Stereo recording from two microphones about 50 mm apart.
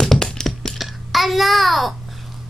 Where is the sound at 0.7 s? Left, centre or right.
Centre.